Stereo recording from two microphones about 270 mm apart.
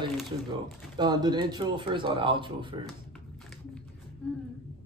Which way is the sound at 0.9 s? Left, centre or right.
Centre.